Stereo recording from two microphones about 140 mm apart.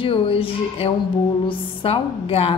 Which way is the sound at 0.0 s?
40° left (ahead or behind).